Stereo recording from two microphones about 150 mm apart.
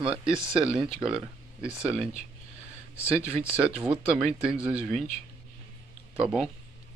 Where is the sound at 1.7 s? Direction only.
5° right (ahead or behind).